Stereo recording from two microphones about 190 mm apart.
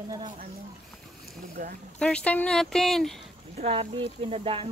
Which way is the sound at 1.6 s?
45° right (ahead or behind).